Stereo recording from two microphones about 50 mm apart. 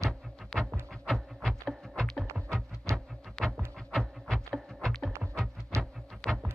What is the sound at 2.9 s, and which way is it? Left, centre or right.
Music, right.